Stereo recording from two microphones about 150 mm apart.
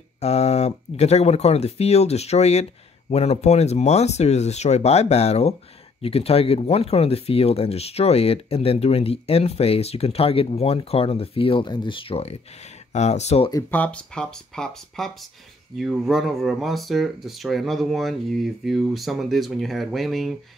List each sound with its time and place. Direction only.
0.2 s speech: 45° left (ahead or behind)
13.5 s speech: 20° left (ahead or behind)
13.7 s speech: 5° left (ahead or behind)